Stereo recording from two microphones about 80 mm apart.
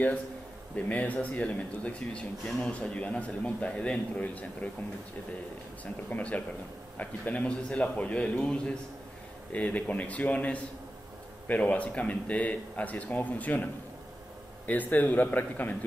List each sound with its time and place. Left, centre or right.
0.7 s speech: centre
6.0 s speech: centre
14.7 s speech: left